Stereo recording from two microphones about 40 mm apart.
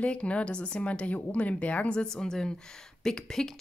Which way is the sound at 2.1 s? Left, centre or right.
Centre.